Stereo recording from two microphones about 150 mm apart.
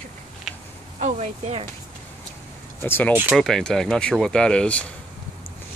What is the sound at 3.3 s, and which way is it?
Speech, centre (ahead or behind).